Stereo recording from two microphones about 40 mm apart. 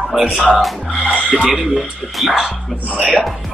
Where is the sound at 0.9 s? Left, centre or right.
Right.